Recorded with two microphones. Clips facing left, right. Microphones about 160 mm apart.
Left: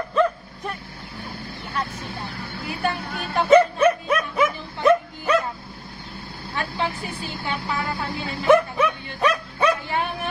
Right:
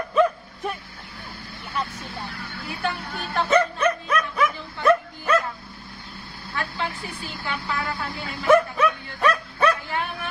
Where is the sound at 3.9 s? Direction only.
25° left (ahead or behind).